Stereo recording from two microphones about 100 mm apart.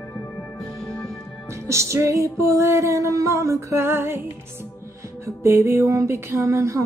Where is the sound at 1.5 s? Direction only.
30° right (ahead or behind).